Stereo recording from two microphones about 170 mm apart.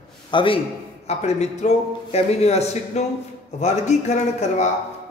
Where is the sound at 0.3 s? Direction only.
30° left (ahead or behind).